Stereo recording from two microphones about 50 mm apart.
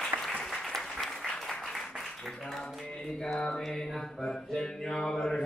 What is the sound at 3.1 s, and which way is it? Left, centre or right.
Mantra, centre.